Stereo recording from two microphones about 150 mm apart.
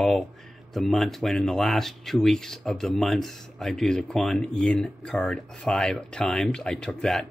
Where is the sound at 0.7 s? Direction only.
Centre (ahead or behind).